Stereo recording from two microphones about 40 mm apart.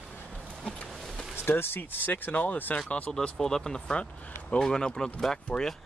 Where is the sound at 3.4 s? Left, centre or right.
Centre.